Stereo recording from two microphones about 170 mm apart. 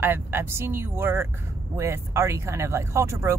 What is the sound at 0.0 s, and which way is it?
Speech, 15° right (ahead or behind).